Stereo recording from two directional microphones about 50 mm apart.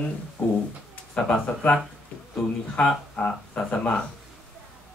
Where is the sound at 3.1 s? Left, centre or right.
Left.